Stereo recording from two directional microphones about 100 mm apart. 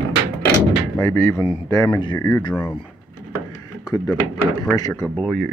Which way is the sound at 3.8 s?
35° left (ahead or behind).